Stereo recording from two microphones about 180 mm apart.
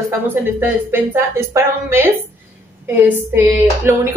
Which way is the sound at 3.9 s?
10° right (ahead or behind).